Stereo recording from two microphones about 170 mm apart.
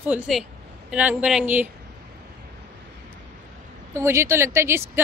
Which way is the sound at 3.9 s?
15° right (ahead or behind).